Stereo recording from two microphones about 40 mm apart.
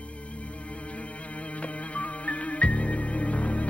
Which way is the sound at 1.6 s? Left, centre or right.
Left.